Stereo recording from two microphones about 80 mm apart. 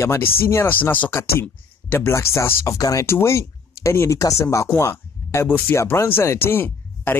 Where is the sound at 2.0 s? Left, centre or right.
Left.